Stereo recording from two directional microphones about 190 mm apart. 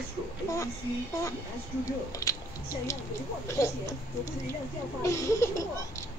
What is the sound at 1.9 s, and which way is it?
Speech, 20° left (ahead or behind).